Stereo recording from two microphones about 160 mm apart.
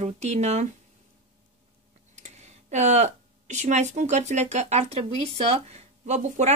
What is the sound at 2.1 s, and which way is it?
Speech, 45° right (ahead or behind).